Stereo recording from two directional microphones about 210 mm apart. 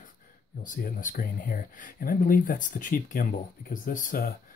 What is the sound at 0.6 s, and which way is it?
Speech, 40° left (ahead or behind).